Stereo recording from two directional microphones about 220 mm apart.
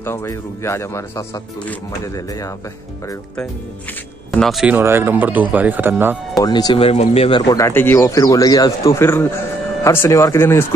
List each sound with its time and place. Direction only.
0.0 s speech: 10° left (ahead or behind)
4.3 s speech: centre (ahead or behind)
6.4 s speech: 20° left (ahead or behind)